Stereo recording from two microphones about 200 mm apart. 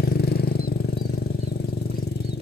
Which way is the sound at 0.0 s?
50° left (ahead or behind).